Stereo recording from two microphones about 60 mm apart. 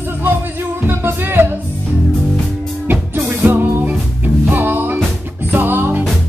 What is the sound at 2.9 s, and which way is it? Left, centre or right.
Music, right.